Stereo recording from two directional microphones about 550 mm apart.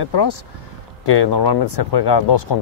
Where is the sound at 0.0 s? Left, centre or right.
Left.